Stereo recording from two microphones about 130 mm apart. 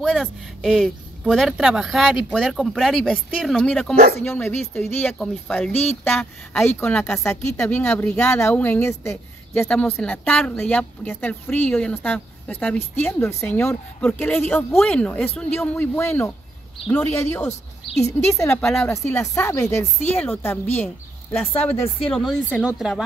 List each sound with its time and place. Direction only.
0.0 s a woman's voice: centre (ahead or behind)
5.7 s speech: 55° left (ahead or behind)
6.0 s a woman's voice: 5° left (ahead or behind)
9.7 s speech: 5° left (ahead or behind)
9.9 s a woman's voice: 15° left (ahead or behind)
10.2 s speech: 5° left (ahead or behind)
10.5 s a woman's voice: 15° left (ahead or behind)
18.5 s speech: 5° left (ahead or behind)
18.9 s a woman's voice: 20° left (ahead or behind)
22.7 s speech: 5° right (ahead or behind)